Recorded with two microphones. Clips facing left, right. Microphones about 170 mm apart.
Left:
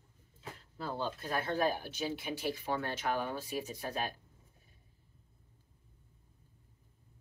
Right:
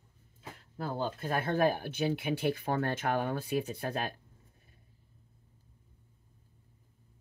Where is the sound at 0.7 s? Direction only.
50° right (ahead or behind).